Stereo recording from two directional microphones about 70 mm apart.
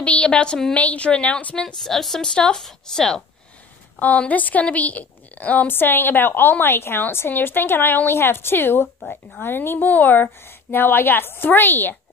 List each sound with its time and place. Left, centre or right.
0.0 s a woman's voice: centre
1.8 s a woman's voice: centre
4.0 s a woman's voice: left